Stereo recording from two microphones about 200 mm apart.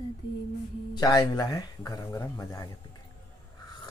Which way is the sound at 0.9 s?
20° left (ahead or behind).